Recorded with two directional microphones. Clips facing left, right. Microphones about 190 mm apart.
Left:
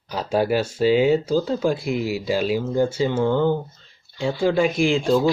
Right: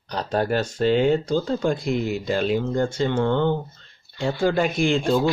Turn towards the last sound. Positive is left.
turn(degrees=0)  # may be behind; listen again after turning